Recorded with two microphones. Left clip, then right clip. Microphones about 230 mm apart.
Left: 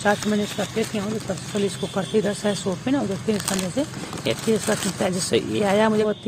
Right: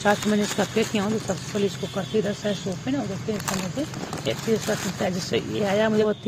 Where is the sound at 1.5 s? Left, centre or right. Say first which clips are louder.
Left 3 dB; centre.